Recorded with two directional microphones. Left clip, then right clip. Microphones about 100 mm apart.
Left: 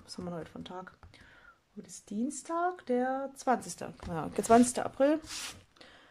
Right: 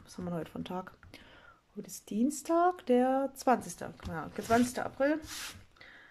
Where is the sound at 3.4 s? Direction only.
5° left (ahead or behind).